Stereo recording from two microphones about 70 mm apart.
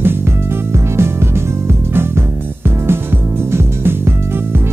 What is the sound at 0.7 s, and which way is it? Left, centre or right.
Music, right.